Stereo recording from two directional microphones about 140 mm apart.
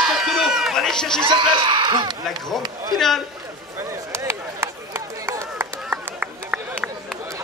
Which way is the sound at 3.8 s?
20° right (ahead or behind).